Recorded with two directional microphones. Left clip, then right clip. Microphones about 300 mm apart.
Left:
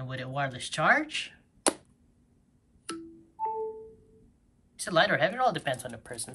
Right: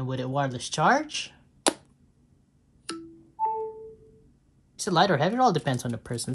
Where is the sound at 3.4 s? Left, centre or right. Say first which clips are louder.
Right 4 dB; centre.